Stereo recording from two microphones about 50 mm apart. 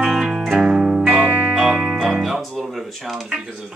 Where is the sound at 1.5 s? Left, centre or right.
Centre.